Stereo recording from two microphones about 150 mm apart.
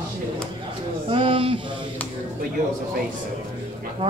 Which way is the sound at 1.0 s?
35° right (ahead or behind).